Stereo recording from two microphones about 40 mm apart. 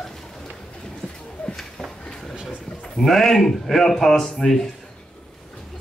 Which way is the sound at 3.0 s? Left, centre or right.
Centre.